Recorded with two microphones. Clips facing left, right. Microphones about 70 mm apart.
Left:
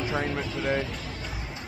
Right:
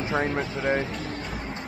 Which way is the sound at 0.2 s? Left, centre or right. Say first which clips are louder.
Right 3 dB; right.